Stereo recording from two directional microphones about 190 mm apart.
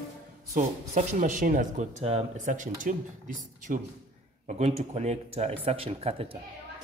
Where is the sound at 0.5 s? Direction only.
40° right (ahead or behind).